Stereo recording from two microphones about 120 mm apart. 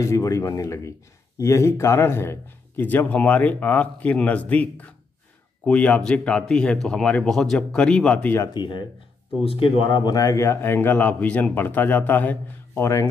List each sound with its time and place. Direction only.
0.0 s speech: 25° left (ahead or behind)
8.5 s speech: 40° left (ahead or behind); by 13.1 s 20° left (ahead or behind)